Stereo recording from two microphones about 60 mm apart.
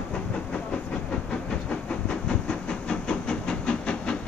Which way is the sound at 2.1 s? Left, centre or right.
Centre.